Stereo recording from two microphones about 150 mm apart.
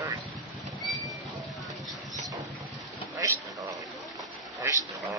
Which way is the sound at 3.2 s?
20° right (ahead or behind).